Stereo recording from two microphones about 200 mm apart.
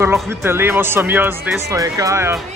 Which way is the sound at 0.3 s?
10° right (ahead or behind).